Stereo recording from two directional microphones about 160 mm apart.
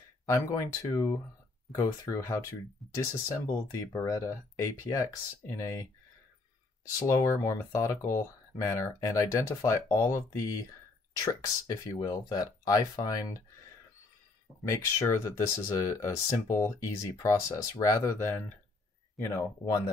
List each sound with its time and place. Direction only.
0.3 s speech: 20° left (ahead or behind)
7.1 s speech: 20° left (ahead or behind)
14.7 s speech: 20° left (ahead or behind)